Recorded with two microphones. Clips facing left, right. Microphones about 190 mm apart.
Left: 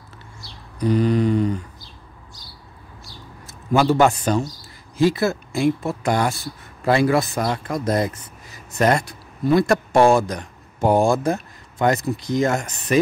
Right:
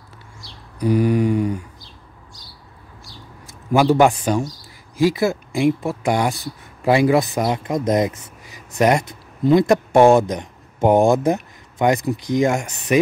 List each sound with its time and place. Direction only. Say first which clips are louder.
0.7 s mantra: right 1 dB; 10° right (ahead or behind)
3.4 s a man's voice: right 2 dB; 15° right (ahead or behind)